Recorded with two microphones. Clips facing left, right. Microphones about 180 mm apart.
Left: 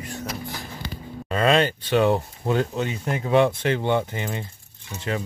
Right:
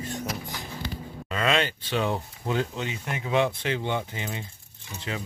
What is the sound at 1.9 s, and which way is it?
Speech, 60° left (ahead or behind).